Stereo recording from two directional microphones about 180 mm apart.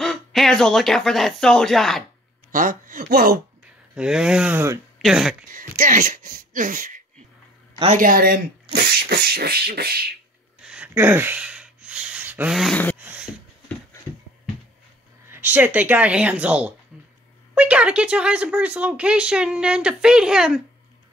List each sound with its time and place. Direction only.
0.0 s speech: centre (ahead or behind)
2.5 s speech: 50° right (ahead or behind)
3.9 s speech: 5° right (ahead or behind)
5.5 s speech: 45° right (ahead or behind)
8.7 s beatboxing: 60° right (ahead or behind)
10.6 s a sound: 5° right (ahead or behind)
13.0 s a sound: 10° right (ahead or behind)
13.9 s a sound: 15° left (ahead or behind)
15.2 s speech: 10° right (ahead or behind)